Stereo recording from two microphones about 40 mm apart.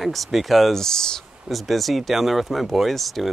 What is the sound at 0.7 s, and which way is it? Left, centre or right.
Speech, centre.